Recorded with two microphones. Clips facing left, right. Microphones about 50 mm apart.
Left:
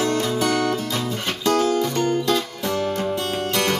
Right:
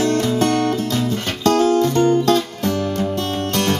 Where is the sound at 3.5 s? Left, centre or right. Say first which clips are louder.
Right 2 dB; left.